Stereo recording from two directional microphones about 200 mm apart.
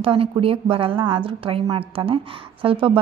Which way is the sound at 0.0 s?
25° right (ahead or behind).